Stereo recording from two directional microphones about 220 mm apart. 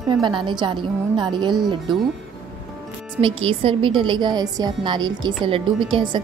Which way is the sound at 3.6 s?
25° right (ahead or behind).